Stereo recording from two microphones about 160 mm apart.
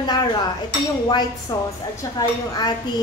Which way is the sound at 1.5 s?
25° left (ahead or behind).